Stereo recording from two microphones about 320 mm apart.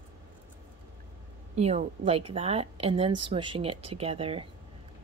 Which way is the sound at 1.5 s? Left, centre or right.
Centre.